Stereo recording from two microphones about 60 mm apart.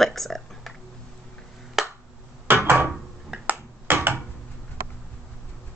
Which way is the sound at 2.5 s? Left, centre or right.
Right.